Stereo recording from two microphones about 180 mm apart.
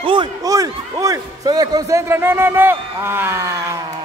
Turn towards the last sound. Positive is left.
turn(degrees=-15)  # may be behind; listen again after turning